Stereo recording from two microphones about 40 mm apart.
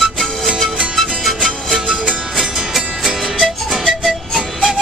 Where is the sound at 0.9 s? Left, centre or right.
Centre.